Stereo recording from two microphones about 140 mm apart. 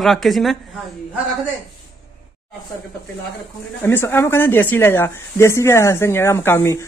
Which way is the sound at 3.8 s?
15° left (ahead or behind).